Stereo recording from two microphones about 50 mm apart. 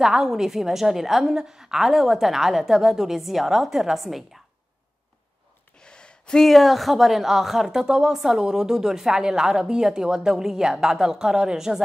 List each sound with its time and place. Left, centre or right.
0.0 s a woman's voice: centre
5.8 s gasp: centre
6.4 s speech: centre